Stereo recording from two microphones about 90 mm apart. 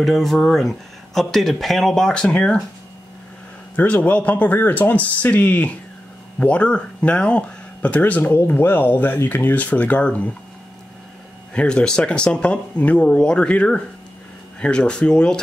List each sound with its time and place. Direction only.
0.0 s speech: centre (ahead or behind)
3.7 s speech: 15° left (ahead or behind)
11.5 s speech: 10° left (ahead or behind)